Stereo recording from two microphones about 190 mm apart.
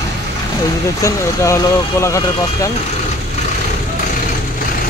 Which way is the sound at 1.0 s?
15° left (ahead or behind).